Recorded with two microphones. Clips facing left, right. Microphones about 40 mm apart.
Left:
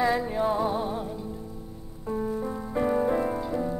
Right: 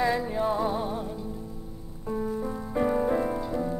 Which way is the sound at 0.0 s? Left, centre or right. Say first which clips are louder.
Left 1 dB; centre.